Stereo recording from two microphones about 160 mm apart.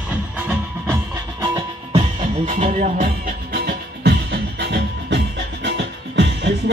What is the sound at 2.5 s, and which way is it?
Music, 55° right (ahead or behind).